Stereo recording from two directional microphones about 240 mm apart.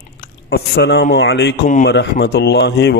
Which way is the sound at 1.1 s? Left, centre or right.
Left.